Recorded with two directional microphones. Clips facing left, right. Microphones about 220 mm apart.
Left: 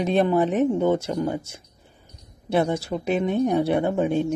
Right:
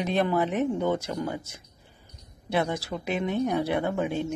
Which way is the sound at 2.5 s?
25° left (ahead or behind).